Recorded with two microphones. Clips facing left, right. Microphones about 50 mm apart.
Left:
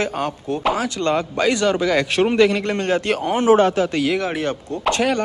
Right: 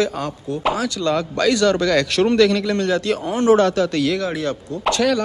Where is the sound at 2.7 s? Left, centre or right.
Left.